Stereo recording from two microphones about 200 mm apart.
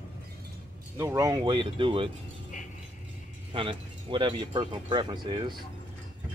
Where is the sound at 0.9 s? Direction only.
15° right (ahead or behind).